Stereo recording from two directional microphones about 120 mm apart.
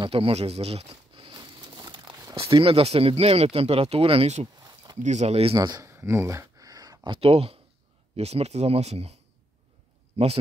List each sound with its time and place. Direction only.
0.0 s crumpling: 50° right (ahead or behind)
2.5 s speech: 50° right (ahead or behind)
4.9 s speech: 75° right (ahead or behind); by 5.6 s 55° right (ahead or behind)
5.6 s a sound: 30° right (ahead or behind)
7.1 s speech: 55° right (ahead or behind)